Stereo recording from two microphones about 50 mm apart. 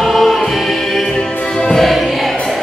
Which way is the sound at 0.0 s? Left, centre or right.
Centre.